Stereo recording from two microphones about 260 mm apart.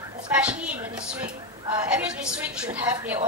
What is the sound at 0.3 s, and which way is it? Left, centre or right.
Speech, centre.